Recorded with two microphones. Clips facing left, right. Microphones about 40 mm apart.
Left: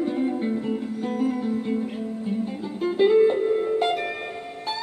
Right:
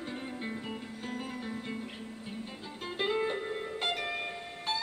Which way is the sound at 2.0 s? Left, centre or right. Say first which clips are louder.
Left 13 dB; left.